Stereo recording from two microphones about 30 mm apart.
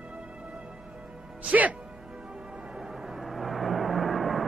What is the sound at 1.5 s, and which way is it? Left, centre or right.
Speech, right.